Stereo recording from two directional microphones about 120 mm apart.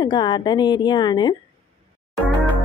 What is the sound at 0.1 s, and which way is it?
A woman's voice, 40° left (ahead or behind).